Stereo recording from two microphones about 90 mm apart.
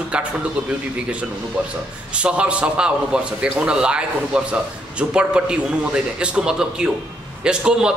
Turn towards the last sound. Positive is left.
turn(degrees=-10)  # may be behind; listen again after turning